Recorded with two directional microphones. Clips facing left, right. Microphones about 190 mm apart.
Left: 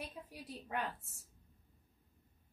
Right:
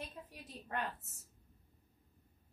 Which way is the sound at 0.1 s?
10° left (ahead or behind).